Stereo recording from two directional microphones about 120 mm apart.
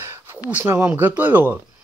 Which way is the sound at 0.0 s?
20° right (ahead or behind).